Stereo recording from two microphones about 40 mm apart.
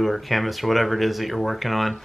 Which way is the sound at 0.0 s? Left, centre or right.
Centre.